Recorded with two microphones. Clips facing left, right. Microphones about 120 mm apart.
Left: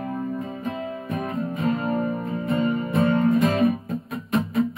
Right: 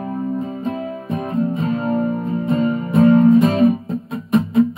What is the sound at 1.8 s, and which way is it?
Music, centre (ahead or behind).